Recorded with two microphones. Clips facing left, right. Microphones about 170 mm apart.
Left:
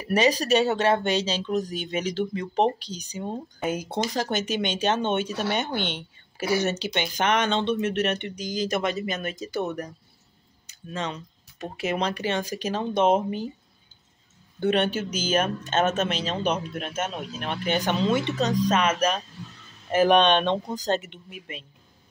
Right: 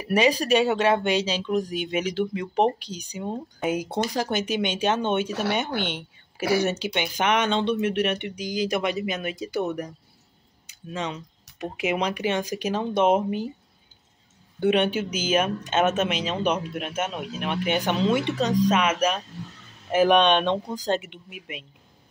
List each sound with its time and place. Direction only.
0.0 s speech: 10° right (ahead or behind)
10.9 s speech: 10° right (ahead or behind)
14.6 s speech: 10° right (ahead or behind)
15.0 s speech: 40° left (ahead or behind)
15.4 s speech: 10° right (ahead or behind)